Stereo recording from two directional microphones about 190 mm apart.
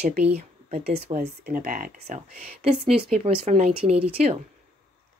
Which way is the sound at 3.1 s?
30° right (ahead or behind).